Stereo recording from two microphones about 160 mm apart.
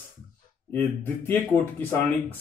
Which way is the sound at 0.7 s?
10° left (ahead or behind).